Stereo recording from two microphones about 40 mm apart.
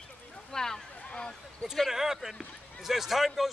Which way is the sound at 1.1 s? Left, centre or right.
Left.